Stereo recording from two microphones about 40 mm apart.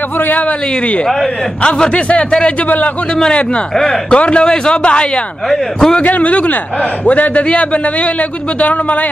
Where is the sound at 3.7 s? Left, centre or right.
Centre.